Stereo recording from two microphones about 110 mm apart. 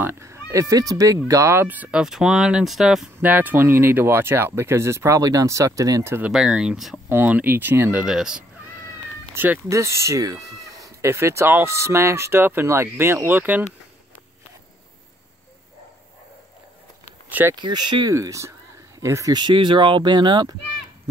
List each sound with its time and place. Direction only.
0.0 s speech: 25° right (ahead or behind); by 3.1 s 5° right (ahead or behind)
3.2 s speech: 15° right (ahead or behind)
6.3 s speech: 5° right (ahead or behind)
7.1 s speech: 15° right (ahead or behind)
8.0 s speech: 5° right (ahead or behind)
9.3 s speech: 20° right (ahead or behind)
17.3 s speech: 20° right (ahead or behind)
17.6 s speech: 45° right (ahead or behind)
18.1 s speech: 30° right (ahead or behind)
19.3 s speech: 45° right (ahead or behind)